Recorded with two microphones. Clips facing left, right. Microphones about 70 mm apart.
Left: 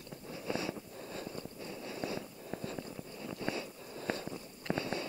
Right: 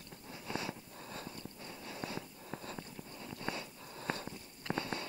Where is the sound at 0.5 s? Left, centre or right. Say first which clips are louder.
Left 4 dB; right.